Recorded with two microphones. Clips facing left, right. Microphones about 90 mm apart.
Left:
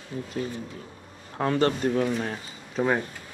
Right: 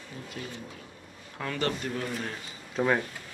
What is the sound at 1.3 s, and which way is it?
Speech, 35° left (ahead or behind).